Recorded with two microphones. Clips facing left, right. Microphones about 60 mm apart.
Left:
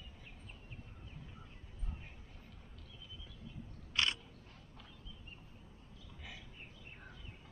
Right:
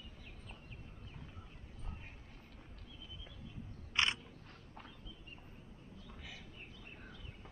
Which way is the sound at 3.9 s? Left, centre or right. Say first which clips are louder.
Right 1 dB; right.